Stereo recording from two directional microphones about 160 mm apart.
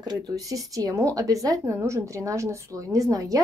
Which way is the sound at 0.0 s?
25° right (ahead or behind).